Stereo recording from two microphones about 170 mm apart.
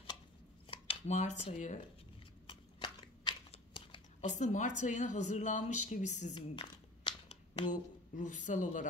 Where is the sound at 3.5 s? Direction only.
30° left (ahead or behind).